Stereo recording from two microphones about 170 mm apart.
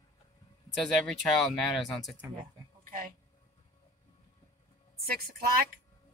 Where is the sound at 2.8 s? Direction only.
55° right (ahead or behind).